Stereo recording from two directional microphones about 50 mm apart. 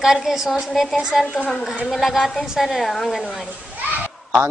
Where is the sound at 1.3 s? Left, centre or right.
Left.